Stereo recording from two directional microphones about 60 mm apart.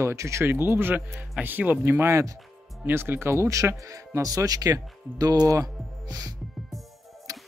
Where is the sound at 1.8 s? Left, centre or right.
Right.